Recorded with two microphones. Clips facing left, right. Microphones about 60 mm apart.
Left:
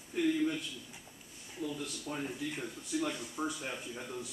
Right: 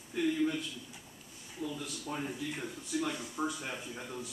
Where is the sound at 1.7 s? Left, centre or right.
Centre.